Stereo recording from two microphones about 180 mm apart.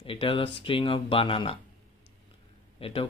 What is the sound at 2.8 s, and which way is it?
Speech, 30° left (ahead or behind).